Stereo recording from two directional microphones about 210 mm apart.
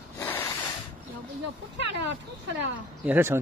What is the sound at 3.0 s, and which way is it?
Speech, 10° right (ahead or behind).